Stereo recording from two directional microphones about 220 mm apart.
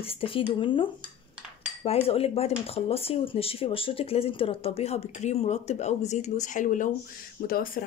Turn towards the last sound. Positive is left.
turn(degrees=40)  # may be behind; listen again after turning